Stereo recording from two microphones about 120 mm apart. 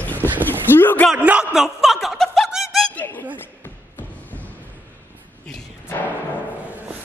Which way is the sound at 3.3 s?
15° left (ahead or behind).